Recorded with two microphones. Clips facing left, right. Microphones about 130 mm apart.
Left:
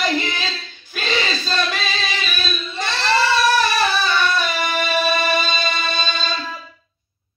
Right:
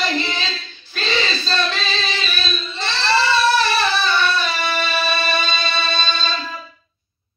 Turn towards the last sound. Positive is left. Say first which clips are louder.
# right 1 dB
turn(degrees=15)  # may be behind; listen again after turning